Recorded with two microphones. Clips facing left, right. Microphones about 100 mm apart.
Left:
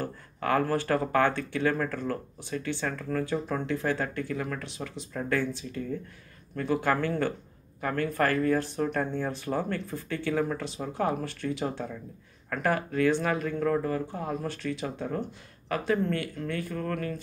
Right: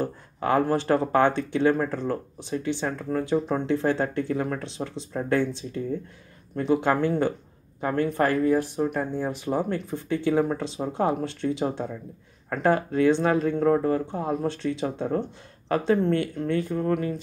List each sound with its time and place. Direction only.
0.0 s speech: 20° right (ahead or behind)